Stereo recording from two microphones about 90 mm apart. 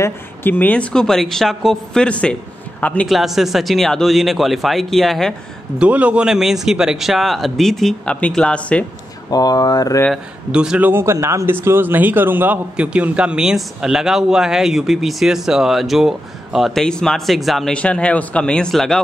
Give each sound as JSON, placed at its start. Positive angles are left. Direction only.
{"t": 0.0, "sound": "speech", "side_deg": 25}
{"t": 0.9, "sound": "a man's voice", "side_deg": 5}
{"t": 3.1, "sound": "a man's voice", "side_deg": 0}
{"t": 5.8, "sound": "a man's voice", "side_deg": -15}
{"t": 9.3, "sound": "speech", "side_deg": 45}
{"t": 10.1, "sound": "a man's voice", "side_deg": -10}
{"t": 10.9, "sound": "a man's voice", "side_deg": -30}
{"t": 17.7, "sound": "speech", "side_deg": 15}